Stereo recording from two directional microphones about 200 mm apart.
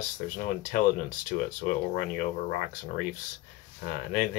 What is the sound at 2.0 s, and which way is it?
Speech, 45° left (ahead or behind).